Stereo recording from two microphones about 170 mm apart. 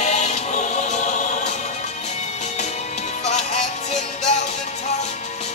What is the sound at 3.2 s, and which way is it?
Music, 40° left (ahead or behind).